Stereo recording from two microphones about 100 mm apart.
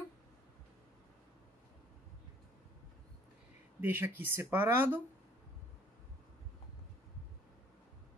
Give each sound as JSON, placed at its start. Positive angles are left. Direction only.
{"t": 3.8, "sound": "speech", "side_deg": -20}